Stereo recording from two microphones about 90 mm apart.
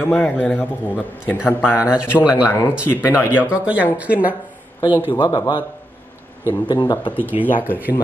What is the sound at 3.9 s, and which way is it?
Speech, 15° right (ahead or behind).